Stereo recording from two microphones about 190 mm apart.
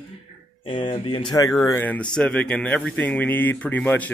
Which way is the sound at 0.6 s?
25° left (ahead or behind).